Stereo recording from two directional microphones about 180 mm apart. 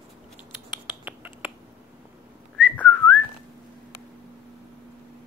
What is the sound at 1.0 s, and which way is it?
Finger snapping, 10° right (ahead or behind).